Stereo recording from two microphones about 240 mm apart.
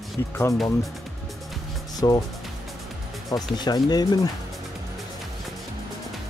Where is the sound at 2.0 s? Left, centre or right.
Centre.